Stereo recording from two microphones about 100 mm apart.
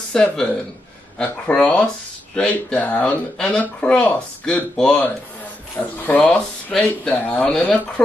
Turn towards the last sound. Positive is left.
turn(degrees=15)  # may be behind; listen again after turning